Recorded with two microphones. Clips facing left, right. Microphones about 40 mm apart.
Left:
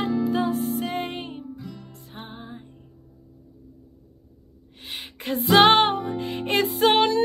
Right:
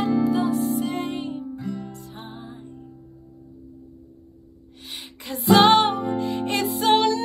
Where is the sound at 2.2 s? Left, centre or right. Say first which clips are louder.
Left 1 dB; centre.